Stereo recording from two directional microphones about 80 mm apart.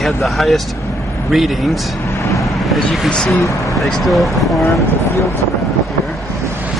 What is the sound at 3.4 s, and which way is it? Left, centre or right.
Speech, left.